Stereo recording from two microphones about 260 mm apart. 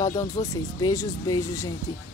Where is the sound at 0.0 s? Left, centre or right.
Centre.